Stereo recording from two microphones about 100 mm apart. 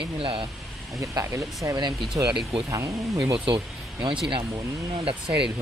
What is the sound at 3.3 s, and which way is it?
Speech, 60° right (ahead or behind).